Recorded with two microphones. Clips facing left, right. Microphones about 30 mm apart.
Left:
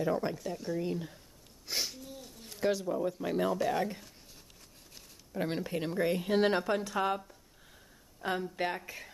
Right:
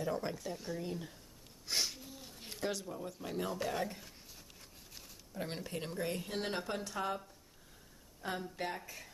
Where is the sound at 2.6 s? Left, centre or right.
Centre.